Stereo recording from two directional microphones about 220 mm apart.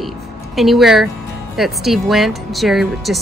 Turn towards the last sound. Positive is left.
turn(degrees=0)  # may be behind; listen again after turning